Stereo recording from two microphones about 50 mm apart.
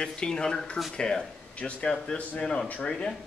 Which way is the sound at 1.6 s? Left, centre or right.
Left.